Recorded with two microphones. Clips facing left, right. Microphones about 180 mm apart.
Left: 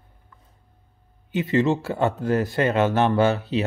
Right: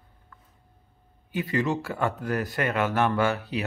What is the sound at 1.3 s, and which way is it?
Speech, 25° left (ahead or behind).